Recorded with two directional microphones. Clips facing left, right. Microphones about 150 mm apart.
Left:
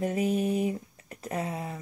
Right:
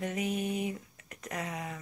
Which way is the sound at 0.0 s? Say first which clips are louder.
Left 6 dB; 35° left (ahead or behind).